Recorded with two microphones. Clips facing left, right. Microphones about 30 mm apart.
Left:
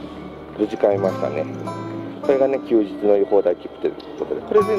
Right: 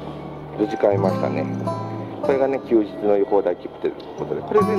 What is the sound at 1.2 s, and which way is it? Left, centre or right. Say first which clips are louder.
Speech: even; centre.